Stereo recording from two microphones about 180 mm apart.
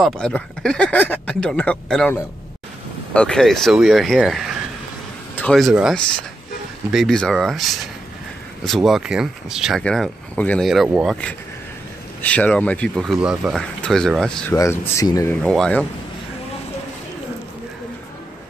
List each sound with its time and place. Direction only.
0.0 s a man's voice: 5° left (ahead or behind)
14.5 s a man's voice: 15° left (ahead or behind)
15.4 s speech: 5° left (ahead or behind)